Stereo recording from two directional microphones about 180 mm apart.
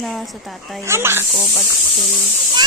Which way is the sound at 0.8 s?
15° right (ahead or behind).